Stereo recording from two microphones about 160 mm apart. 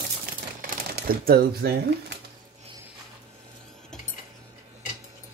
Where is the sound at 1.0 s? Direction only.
70° right (ahead or behind).